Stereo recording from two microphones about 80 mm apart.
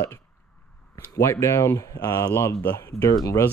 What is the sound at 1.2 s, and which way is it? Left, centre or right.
Speech, left.